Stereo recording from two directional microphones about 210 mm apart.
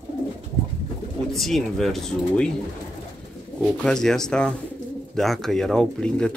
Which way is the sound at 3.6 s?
Centre (ahead or behind).